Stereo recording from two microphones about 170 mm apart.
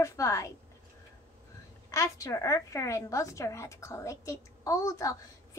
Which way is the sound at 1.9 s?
20° left (ahead or behind).